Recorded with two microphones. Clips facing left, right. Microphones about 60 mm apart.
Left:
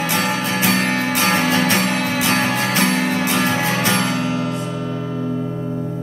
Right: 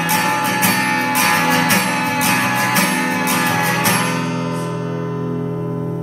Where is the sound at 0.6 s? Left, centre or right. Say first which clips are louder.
Right 1 dB; right.